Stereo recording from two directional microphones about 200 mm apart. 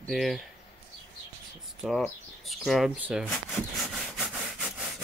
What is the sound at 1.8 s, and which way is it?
Speech, centre (ahead or behind).